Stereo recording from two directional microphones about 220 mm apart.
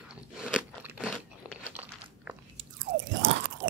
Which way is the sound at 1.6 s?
5° right (ahead or behind).